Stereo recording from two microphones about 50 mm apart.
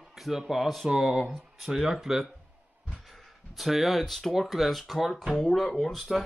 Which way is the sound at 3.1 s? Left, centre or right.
Centre.